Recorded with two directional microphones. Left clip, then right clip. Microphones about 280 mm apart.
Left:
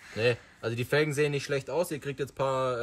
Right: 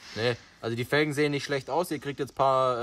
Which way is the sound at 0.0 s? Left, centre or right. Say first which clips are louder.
Left 1 dB; centre.